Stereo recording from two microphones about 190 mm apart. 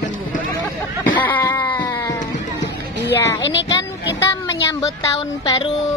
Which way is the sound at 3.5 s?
20° left (ahead or behind).